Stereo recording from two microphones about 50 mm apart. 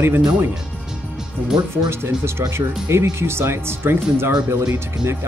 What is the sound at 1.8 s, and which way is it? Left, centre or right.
Speech, right.